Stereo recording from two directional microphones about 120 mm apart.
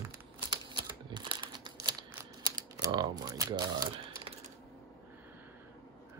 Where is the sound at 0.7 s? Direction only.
40° right (ahead or behind).